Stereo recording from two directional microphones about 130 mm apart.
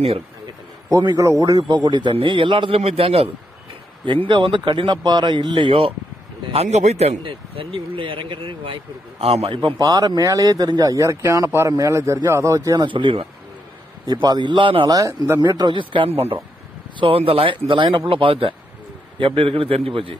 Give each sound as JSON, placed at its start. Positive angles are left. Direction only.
{"t": 0.8, "sound": "a man's voice", "side_deg": -25}
{"t": 6.5, "sound": "speech", "side_deg": -55}
{"t": 9.8, "sound": "a man's voice", "side_deg": -30}
{"t": 15.0, "sound": "a man's voice", "side_deg": -25}